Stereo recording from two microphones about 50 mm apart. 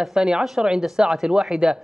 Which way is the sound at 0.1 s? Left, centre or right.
Centre.